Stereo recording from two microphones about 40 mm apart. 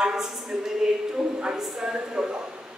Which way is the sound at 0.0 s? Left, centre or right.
Centre.